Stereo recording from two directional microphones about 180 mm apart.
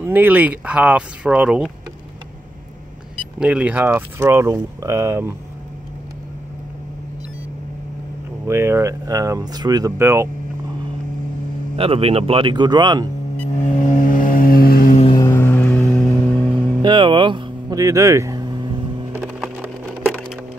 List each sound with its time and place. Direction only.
0.0 s speech: 10° right (ahead or behind)
3.3 s speech: 5° right (ahead or behind)
8.5 s speech: 15° right (ahead or behind)
11.7 s speech: 30° right (ahead or behind)
13.6 s vehicle: 45° left (ahead or behind)
15.1 s vehicle: 15° left (ahead or behind)
16.8 s vehicle: 25° right (ahead or behind)
19.1 s a sound: 10° right (ahead or behind)